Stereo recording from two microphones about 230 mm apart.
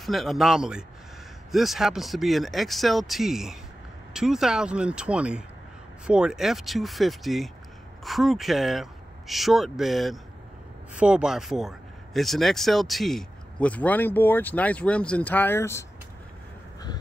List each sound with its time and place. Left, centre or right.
0.0 s speech: centre